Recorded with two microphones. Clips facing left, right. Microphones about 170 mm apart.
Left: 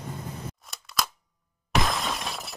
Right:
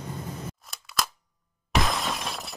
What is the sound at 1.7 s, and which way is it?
Shatter, centre (ahead or behind).